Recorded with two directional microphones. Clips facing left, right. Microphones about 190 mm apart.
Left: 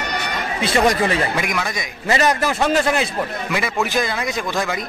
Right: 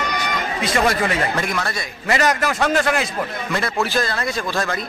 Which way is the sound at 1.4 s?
15° left (ahead or behind).